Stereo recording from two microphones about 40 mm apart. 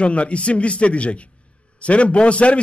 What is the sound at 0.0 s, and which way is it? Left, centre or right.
A man's voice, left.